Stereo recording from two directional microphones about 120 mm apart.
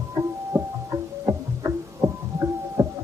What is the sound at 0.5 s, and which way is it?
Music, 25° right (ahead or behind).